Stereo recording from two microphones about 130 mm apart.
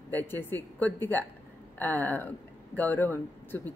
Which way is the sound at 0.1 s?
15° left (ahead or behind).